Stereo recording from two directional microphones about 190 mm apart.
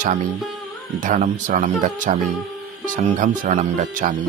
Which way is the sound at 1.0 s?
40° right (ahead or behind).